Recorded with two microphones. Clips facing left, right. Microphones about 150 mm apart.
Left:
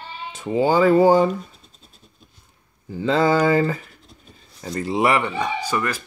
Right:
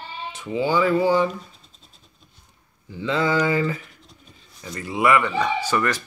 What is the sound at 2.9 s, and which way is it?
Speech, 40° left (ahead or behind).